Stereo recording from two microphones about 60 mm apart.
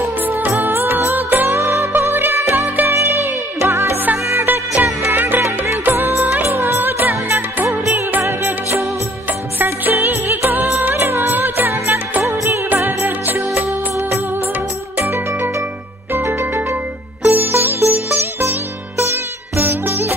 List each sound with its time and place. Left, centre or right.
0.6 s music: right
1.5 s music: right
1.9 s music: right
6.4 s music of bollywood: right
8.2 s music: right
9.6 s music: right
11.0 s music: right
12.2 s music of bollywood: right
12.6 s music: right
15.0 s music: right
19.5 s music: right